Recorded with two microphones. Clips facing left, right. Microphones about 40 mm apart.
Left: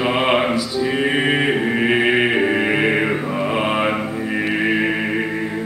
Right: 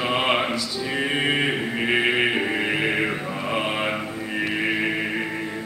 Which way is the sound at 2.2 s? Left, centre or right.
Centre.